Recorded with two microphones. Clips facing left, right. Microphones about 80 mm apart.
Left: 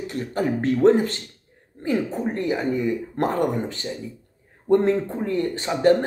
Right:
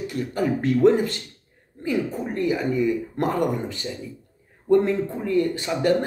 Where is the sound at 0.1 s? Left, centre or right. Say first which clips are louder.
Even; left.